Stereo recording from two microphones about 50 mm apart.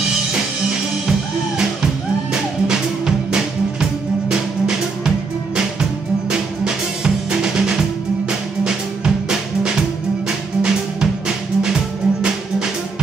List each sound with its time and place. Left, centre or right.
4.3 s music: centre
9.6 s music: centre